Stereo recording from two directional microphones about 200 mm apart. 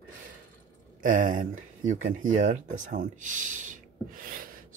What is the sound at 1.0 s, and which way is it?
Speech, 40° right (ahead or behind).